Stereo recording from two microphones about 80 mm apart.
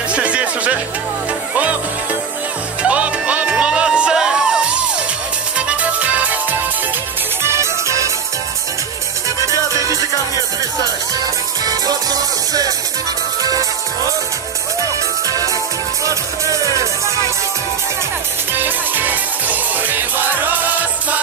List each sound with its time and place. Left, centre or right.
0.1 s music: centre
2.8 s music: centre
7.4 s music: right
9.5 s music: right
9.9 s music: left
11.6 s music: right
15.2 s music: right
18.5 s music: right